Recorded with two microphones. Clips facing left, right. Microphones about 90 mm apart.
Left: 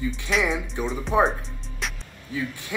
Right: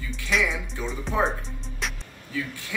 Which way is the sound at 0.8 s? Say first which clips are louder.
Left 4 dB; 25° left (ahead or behind).